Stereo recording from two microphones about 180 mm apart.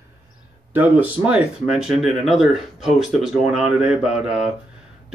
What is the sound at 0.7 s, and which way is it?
Speech, 10° right (ahead or behind).